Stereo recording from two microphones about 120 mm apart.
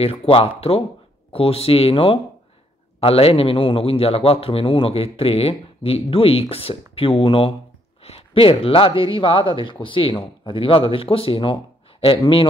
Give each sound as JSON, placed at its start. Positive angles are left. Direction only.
{"t": 0.0, "sound": "a man's voice", "side_deg": 55}